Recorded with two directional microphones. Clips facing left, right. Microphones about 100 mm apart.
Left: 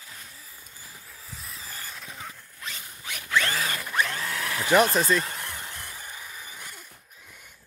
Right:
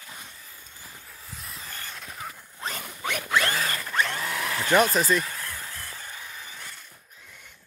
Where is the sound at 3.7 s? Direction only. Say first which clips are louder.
Even; 10° left (ahead or behind).